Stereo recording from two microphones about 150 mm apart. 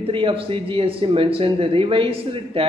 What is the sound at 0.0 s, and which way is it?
Speech, 35° right (ahead or behind).